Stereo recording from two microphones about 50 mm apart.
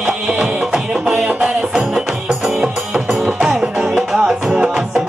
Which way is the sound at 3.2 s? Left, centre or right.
Centre.